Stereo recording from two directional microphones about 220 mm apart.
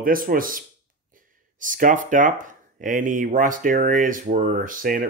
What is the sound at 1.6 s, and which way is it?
Speech, 35° right (ahead or behind).